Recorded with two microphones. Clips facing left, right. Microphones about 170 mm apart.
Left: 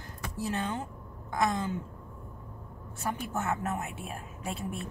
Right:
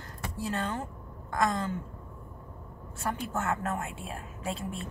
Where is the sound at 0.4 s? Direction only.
10° left (ahead or behind).